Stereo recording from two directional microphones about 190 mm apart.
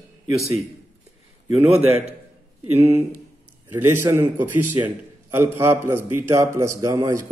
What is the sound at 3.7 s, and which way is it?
A man's voice, 10° right (ahead or behind).